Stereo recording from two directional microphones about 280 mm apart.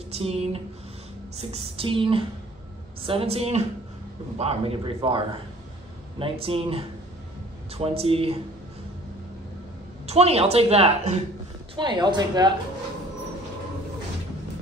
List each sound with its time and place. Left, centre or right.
0.1 s a sound: right
1.3 s a woman's voice: right
10.0 s a woman's voice: right